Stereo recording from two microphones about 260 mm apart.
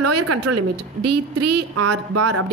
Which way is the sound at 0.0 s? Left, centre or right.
Right.